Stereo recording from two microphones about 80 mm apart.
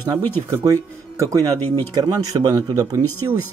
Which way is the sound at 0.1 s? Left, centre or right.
Right.